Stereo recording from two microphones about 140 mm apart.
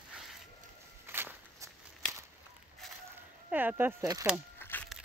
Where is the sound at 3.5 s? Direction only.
15° right (ahead or behind).